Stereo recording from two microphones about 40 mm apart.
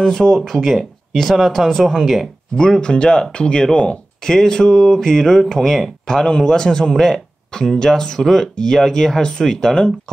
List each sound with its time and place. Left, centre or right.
0.0 s speech: centre
1.1 s speech: centre
2.5 s a man's voice: centre
8.2 s a man's voice: centre